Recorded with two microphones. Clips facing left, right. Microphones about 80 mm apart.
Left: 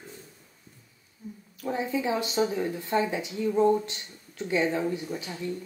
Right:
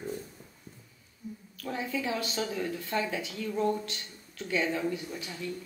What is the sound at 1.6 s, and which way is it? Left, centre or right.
Speech, left.